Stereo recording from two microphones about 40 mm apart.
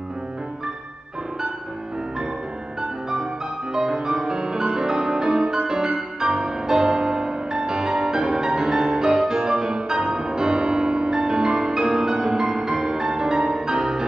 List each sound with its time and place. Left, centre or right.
3.7 s music: centre